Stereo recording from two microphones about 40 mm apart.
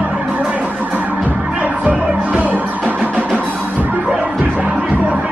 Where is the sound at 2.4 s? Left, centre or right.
Right.